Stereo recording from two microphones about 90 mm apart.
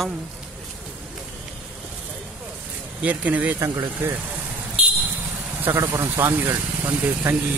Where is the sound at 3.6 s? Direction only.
30° right (ahead or behind).